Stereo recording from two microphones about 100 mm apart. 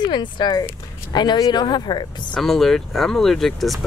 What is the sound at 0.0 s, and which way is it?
Speech, 50° left (ahead or behind).